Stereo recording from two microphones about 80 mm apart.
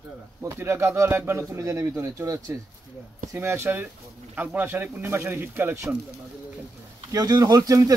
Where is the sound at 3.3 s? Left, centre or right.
Right.